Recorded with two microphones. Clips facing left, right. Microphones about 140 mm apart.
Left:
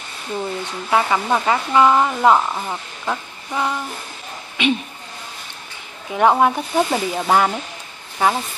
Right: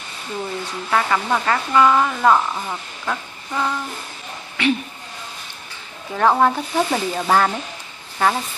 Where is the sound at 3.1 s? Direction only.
15° left (ahead or behind).